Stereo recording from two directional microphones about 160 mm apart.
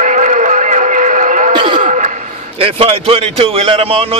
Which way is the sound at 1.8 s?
45° right (ahead or behind).